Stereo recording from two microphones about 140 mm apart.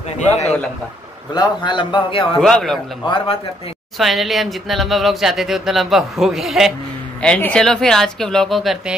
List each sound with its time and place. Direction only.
1.3 s a man's voice: 30° left (ahead or behind)
2.4 s speech: 5° left (ahead or behind)
3.0 s a man's voice: 35° left (ahead or behind)
4.0 s speech: centre (ahead or behind)
7.2 s speech: 10° left (ahead or behind)